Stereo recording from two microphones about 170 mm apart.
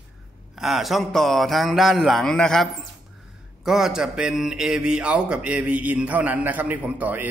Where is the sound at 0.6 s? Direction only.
Centre (ahead or behind).